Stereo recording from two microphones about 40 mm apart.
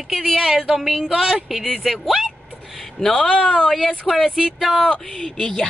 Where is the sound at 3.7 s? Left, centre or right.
Centre.